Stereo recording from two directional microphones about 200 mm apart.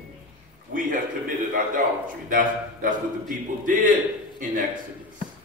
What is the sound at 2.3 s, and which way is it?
A man's voice, 40° right (ahead or behind).